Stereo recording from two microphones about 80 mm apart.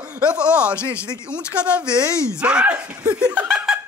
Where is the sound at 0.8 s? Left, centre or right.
Left.